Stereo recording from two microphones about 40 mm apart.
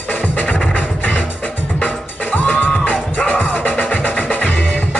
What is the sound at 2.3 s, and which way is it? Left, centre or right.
Music, left.